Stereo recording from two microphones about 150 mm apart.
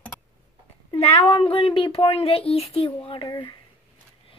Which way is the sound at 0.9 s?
45° left (ahead or behind).